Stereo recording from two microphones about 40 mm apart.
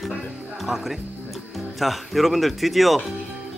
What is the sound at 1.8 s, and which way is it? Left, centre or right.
Speech, centre.